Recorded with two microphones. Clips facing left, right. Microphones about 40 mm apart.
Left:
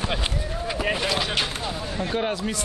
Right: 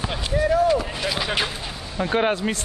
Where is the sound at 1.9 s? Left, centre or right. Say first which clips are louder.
Right 6 dB; right.